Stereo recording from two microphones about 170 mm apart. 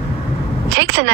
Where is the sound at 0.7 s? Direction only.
90° right.